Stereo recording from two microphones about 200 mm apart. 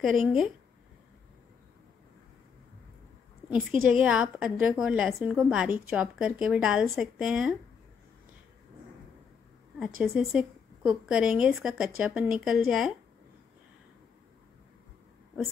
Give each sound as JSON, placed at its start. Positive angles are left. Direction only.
{"t": 0.0, "sound": "a woman's voice", "side_deg": 0}
{"t": 3.9, "sound": "a woman's voice", "side_deg": -5}
{"t": 9.8, "sound": "a woman's voice", "side_deg": -5}